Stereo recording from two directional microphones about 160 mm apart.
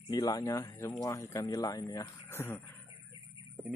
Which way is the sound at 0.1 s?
20° left (ahead or behind).